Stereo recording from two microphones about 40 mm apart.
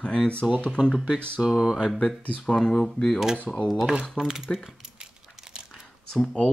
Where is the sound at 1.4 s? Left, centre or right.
Centre.